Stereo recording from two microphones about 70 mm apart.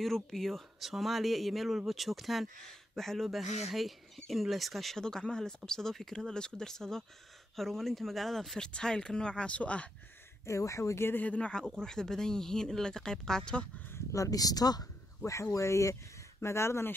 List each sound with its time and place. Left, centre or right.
0.0 s speech: centre
10.4 s speech: left
11.2 s speech: centre
13.9 s speech: left
15.5 s speech: left